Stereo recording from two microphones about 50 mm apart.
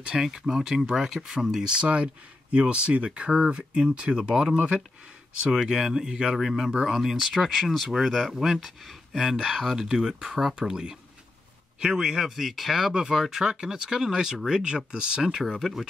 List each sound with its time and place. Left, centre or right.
0.0 s speech: centre
15.4 s speech: centre